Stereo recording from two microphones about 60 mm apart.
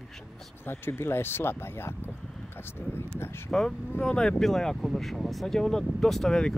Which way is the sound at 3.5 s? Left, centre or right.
Centre.